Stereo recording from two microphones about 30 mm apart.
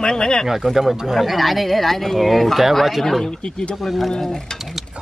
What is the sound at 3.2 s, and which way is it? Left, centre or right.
Speech, left.